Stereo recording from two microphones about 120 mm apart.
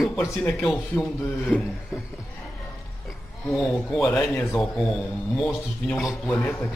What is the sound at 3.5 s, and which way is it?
A man's voice, centre (ahead or behind).